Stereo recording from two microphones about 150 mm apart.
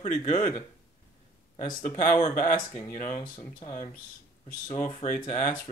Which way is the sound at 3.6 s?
50° left (ahead or behind).